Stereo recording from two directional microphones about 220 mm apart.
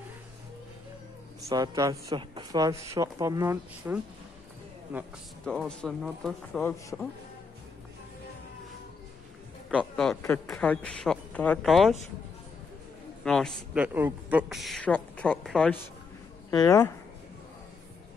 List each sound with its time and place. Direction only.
1.5 s speech: 15° right (ahead or behind)
5.4 s speech: 5° left (ahead or behind)
9.7 s a man's voice: centre (ahead or behind)
10.2 s speech: 15° left (ahead or behind)
13.2 s speech: 5° left (ahead or behind)
13.8 s speech: 10° right (ahead or behind)
16.4 s speech: 15° left (ahead or behind)